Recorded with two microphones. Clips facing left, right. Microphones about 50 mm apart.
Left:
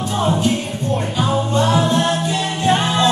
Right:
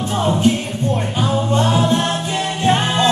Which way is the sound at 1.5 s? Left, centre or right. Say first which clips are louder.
Right 1 dB; right.